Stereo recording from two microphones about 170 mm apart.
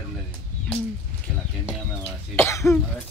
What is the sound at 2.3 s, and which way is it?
Cough, 15° left (ahead or behind).